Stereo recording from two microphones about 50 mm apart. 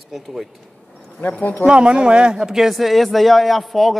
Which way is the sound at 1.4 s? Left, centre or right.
Left.